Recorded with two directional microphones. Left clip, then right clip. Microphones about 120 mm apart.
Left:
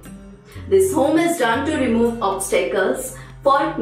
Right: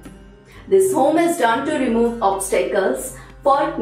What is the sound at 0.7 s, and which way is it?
A woman's voice, centre (ahead or behind).